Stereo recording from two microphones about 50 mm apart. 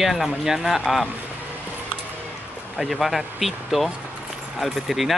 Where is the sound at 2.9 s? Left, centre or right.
Centre.